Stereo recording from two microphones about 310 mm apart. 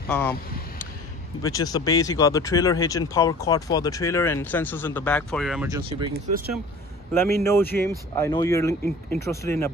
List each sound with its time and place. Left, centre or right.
0.1 s speech: centre
1.4 s speech: centre
5.7 s speech: centre
7.4 s speech: centre